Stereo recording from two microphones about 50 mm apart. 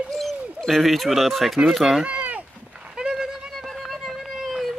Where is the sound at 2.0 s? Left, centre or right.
Right.